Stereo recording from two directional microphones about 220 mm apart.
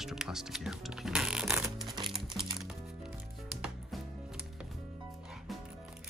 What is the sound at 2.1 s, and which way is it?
Music, centre (ahead or behind).